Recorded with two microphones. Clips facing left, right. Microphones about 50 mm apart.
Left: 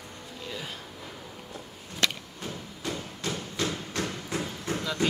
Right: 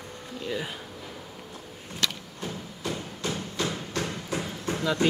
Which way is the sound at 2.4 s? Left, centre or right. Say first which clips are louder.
Right 4 dB; centre.